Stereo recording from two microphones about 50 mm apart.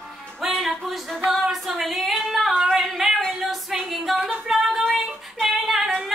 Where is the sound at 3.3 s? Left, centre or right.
Centre.